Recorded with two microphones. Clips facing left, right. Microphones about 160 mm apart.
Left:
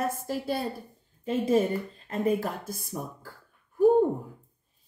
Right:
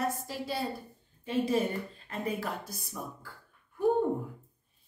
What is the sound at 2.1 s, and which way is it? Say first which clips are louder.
Speech: left 8 dB; 45° left (ahead or behind).